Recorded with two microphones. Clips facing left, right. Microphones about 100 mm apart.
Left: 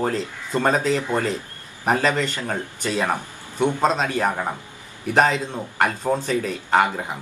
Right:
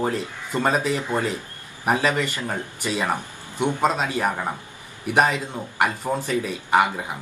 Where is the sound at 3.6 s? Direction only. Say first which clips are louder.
Left 1 dB; 20° left (ahead or behind).